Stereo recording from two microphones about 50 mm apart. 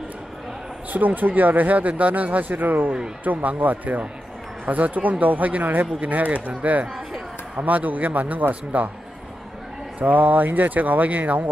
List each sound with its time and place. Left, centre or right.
0.9 s speech: right
9.9 s speech: right